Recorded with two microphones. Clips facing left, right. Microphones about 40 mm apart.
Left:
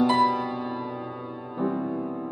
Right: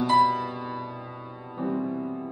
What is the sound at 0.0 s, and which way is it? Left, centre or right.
Music, centre.